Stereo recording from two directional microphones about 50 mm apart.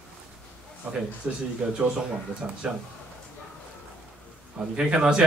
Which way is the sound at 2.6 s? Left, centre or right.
Centre.